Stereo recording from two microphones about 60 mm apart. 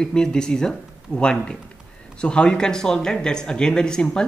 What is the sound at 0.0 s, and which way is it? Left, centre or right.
Speech, centre.